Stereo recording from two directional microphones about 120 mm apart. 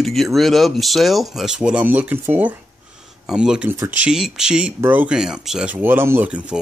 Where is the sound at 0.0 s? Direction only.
Centre (ahead or behind).